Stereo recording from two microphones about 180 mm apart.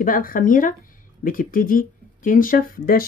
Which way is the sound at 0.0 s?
50° left (ahead or behind).